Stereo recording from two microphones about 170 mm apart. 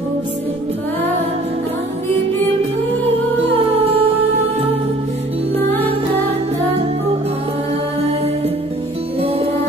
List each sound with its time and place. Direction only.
3.5 s music: 35° right (ahead or behind)
9.2 s music: 35° right (ahead or behind)